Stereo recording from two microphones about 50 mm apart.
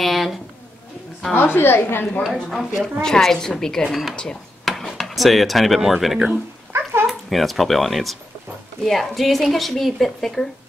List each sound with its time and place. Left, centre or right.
0.0 s speech: centre
1.3 s a woman's voice: left
2.5 s speech: centre
4.6 s speech: centre
6.7 s a sound: right
7.1 s speech: centre